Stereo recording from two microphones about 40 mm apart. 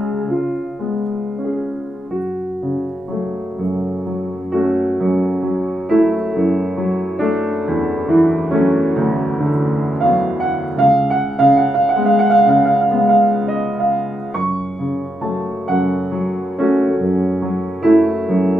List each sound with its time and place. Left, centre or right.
4.6 s music: centre
15.7 s music: centre